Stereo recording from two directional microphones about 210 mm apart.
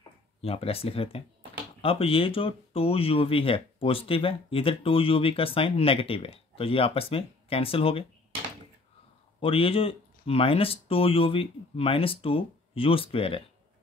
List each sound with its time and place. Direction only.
0.4 s speech: 30° left (ahead or behind)
9.4 s speech: 25° left (ahead or behind)